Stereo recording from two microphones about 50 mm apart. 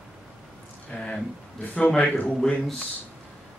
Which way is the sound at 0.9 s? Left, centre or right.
Centre.